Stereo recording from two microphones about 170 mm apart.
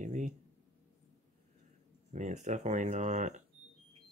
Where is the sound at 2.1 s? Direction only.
45° right (ahead or behind).